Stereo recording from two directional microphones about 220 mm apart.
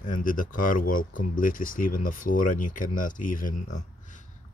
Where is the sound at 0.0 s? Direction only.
40° left (ahead or behind).